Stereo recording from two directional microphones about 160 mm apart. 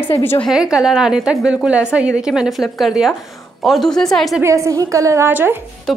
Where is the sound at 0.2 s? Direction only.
15° left (ahead or behind).